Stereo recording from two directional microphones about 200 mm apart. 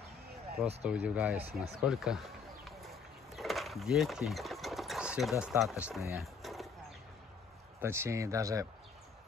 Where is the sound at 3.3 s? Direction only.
Centre (ahead or behind).